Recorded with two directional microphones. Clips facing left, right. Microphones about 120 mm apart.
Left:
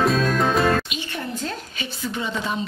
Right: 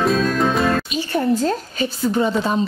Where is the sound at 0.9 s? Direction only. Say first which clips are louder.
Right 11 dB; 35° right (ahead or behind).